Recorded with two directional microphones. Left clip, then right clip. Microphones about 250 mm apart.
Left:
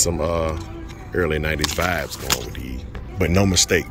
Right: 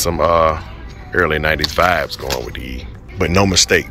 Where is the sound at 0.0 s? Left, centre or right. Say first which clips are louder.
Right 9 dB; centre.